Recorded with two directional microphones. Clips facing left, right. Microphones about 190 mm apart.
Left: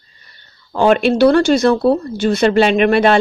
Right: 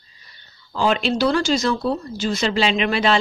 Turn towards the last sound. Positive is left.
turn(degrees=55)  # may be behind; listen again after turning